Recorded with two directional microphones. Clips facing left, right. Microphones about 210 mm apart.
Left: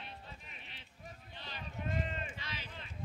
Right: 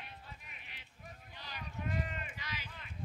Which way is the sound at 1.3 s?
25° left (ahead or behind).